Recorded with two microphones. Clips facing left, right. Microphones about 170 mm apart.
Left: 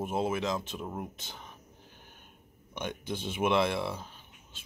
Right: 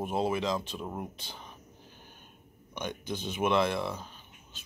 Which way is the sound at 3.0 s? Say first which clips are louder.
Even; 25° left (ahead or behind).